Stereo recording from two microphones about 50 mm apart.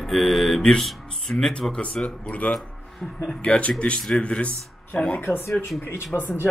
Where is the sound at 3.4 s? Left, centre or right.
Left.